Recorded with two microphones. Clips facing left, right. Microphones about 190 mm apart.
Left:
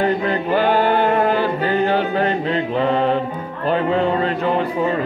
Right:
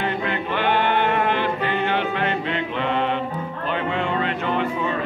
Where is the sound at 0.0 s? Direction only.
35° left (ahead or behind).